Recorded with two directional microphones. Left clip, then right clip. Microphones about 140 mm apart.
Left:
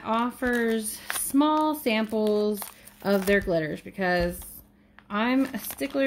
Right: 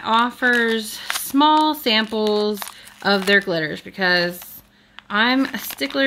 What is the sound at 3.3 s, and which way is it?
Speech, 35° right (ahead or behind).